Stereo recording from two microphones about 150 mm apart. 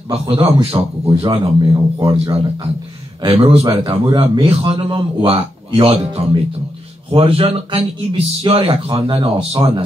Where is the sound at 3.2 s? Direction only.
40° right (ahead or behind).